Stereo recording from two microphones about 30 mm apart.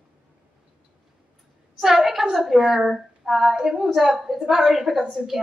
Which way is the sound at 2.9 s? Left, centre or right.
Centre.